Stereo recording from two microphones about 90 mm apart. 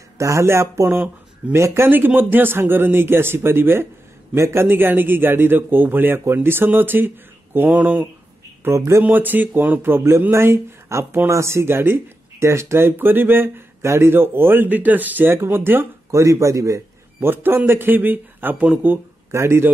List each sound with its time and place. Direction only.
0.2 s speech: 30° right (ahead or behind); by 8.1 s 15° right (ahead or behind)
8.6 s speech: 30° right (ahead or behind)
9.0 s speech: 20° right (ahead or behind)
16.1 s a man's voice: 35° right (ahead or behind)